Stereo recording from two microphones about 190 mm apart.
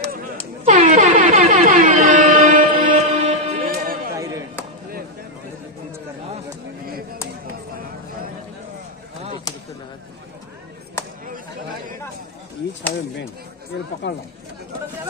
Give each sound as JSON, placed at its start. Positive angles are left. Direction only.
{"t": 0.0, "sound": "air horn", "side_deg": -50}
{"t": 0.7, "sound": "air horn", "side_deg": -40}
{"t": 4.1, "sound": "a sound", "side_deg": -15}
{"t": 14.0, "sound": "speech", "side_deg": 70}